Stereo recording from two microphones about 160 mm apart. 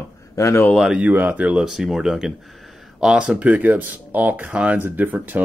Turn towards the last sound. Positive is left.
turn(degrees=-10)  # may be behind; listen again after turning